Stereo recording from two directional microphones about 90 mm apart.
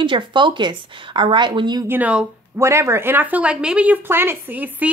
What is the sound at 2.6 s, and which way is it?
Speech, 30° right (ahead or behind).